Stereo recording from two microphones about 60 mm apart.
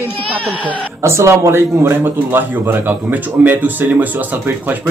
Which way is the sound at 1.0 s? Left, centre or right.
Right.